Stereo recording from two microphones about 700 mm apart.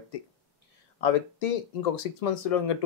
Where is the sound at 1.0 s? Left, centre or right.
Left.